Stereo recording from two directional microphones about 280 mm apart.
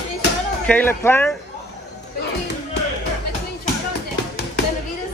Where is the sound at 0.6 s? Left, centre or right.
Centre.